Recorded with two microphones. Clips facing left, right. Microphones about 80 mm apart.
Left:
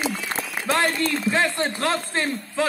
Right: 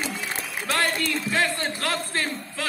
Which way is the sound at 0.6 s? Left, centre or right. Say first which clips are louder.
Left 3 dB; left.